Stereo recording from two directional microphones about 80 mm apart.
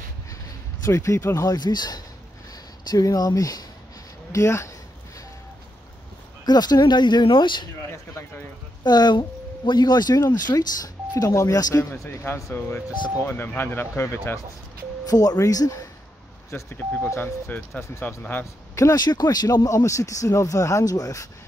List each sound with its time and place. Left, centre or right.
0.8 s speech: left
1.5 s speech: left
6.4 s speech: left
8.8 s speech: left
12.0 s speech: left
15.0 s speech: left
16.4 s speech: left
18.0 s speech: left
18.4 s speech: left
18.9 s speech: left